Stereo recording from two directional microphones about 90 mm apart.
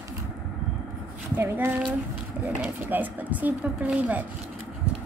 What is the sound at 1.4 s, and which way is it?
Speech, 25° right (ahead or behind).